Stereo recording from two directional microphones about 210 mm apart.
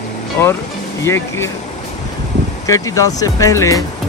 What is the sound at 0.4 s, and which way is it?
Speech, 10° left (ahead or behind).